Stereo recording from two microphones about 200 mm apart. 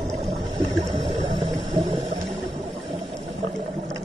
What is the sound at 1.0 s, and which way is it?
Ratchet, 25° right (ahead or behind).